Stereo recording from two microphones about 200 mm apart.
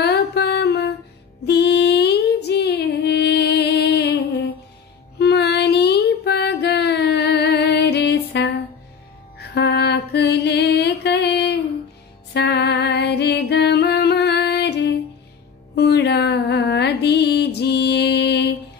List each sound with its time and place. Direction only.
0.0 s music: 55° left (ahead or behind)
5.2 s a sound: 55° left (ahead or behind)
9.4 s music: 60° left (ahead or behind)